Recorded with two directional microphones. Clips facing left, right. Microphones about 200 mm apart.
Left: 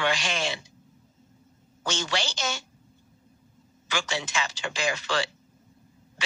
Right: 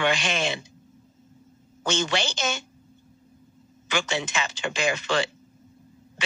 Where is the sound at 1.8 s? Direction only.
55° right (ahead or behind).